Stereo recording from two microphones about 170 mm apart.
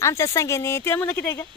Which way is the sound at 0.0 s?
15° left (ahead or behind).